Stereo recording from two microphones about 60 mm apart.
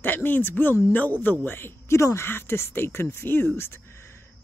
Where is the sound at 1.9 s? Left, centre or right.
Left.